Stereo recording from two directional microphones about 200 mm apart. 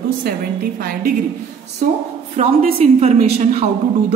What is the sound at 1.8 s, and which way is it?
A woman's voice, 40° right (ahead or behind).